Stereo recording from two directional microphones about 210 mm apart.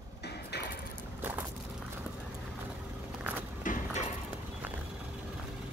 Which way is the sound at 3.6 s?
40° left (ahead or behind).